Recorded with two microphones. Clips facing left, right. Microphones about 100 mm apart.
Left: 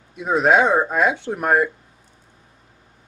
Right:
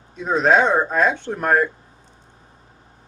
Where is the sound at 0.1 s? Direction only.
10° left (ahead or behind).